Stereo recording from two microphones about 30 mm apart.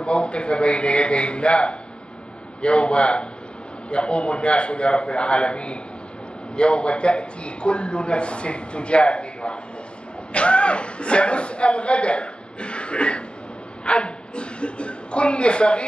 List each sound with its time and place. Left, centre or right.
0.0 s a man's voice: left